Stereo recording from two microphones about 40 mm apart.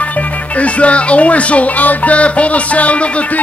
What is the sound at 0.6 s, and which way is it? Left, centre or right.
Music, left.